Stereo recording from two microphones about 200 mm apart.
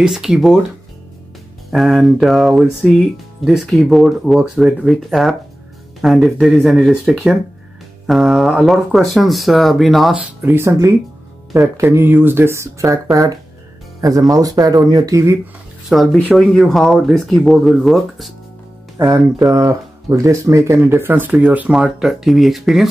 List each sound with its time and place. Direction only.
0.0 s speech: 5° right (ahead or behind)
1.7 s speech: centre (ahead or behind)
10.4 s speech: 10° right (ahead or behind)
14.3 s speech: 20° right (ahead or behind)
15.9 s speech: centre (ahead or behind)
19.0 s music: 10° right (ahead or behind)
19.5 s speech: 15° right (ahead or behind); by 22.8 s centre (ahead or behind)